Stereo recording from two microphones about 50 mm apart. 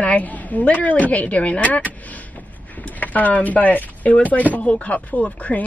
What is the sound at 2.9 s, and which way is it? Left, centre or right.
Speech, left.